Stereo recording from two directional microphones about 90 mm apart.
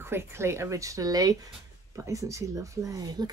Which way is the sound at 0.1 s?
30° right (ahead or behind).